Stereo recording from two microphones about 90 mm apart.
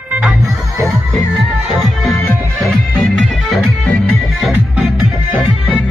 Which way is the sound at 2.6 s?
Centre (ahead or behind).